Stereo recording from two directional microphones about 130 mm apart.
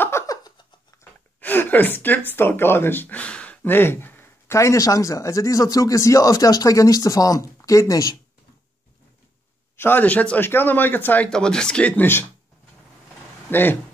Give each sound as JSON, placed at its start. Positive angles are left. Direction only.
{"t": 0.0, "sound": "a sound", "side_deg": 20}
{"t": 1.4, "sound": "speech", "side_deg": 15}
{"t": 9.8, "sound": "speech", "side_deg": 15}
{"t": 13.5, "sound": "speech", "side_deg": 15}